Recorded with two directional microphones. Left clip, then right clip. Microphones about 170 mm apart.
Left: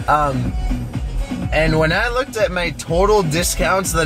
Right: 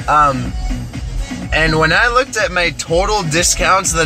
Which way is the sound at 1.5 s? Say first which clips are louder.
Right 3 dB; 10° left (ahead or behind).